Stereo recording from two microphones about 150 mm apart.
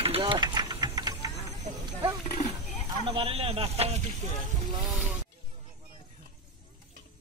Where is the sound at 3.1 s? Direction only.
40° right (ahead or behind).